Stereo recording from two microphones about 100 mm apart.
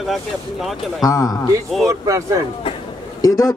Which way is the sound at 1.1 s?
35° left (ahead or behind).